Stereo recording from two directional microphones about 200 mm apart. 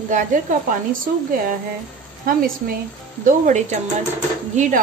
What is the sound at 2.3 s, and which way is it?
A woman's voice, 45° right (ahead or behind).